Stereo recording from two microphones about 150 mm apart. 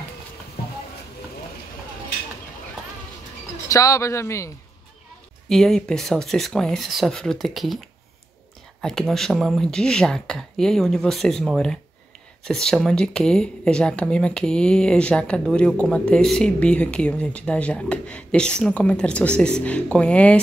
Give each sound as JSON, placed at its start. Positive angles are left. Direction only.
{"t": 3.6, "sound": "speech", "side_deg": 20}
{"t": 5.5, "sound": "speech", "side_deg": 5}
{"t": 8.8, "sound": "speech", "side_deg": 5}